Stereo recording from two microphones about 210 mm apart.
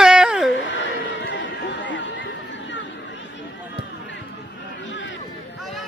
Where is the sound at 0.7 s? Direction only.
60° left (ahead or behind).